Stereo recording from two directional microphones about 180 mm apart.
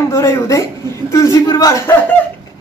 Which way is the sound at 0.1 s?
15° left (ahead or behind).